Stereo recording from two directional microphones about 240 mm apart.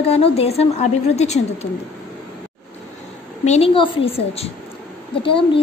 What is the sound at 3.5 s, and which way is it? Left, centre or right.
A woman's voice, left.